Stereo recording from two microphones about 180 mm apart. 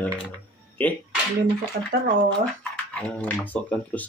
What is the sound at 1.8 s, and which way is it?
Speech, 60° right (ahead or behind).